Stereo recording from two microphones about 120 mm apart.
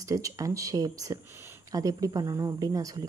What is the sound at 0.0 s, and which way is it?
Speech, 30° right (ahead or behind).